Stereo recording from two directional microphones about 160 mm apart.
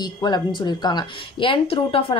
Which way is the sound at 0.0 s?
25° left (ahead or behind).